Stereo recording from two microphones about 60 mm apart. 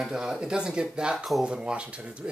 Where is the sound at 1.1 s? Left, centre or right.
Centre.